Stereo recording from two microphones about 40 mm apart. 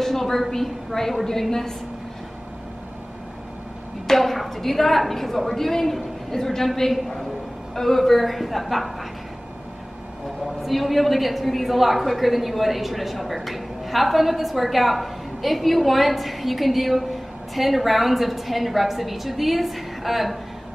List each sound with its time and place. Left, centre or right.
0.0 s a woman's voice: centre
4.1 s a woman's voice: centre
10.6 s a woman's voice: centre